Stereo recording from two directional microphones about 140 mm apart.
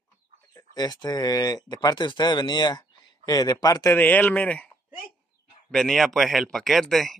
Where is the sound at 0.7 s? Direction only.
30° left (ahead or behind); by 4.6 s 10° left (ahead or behind).